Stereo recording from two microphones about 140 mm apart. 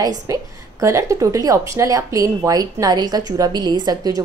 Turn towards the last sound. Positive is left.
turn(degrees=-30)  # may be behind; listen again after turning